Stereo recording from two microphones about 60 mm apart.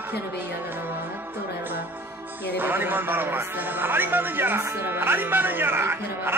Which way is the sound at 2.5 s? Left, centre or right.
Right.